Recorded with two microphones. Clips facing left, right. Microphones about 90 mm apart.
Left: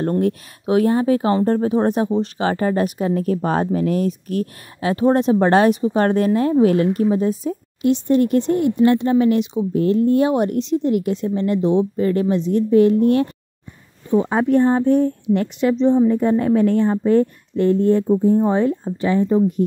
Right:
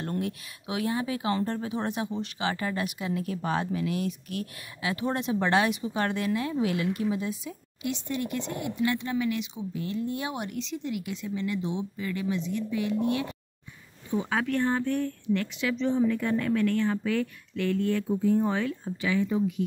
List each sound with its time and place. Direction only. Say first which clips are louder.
0.0 s speech: left 12 dB; 40° left (ahead or behind)
14.4 s a woman's voice: left 12 dB; 30° left (ahead or behind)